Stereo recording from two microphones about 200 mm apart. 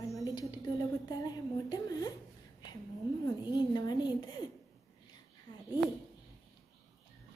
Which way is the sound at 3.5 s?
20° left (ahead or behind).